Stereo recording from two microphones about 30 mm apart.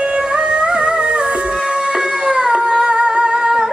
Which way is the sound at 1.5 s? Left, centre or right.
Right.